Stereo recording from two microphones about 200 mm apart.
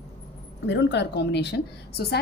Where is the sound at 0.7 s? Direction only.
60° left (ahead or behind).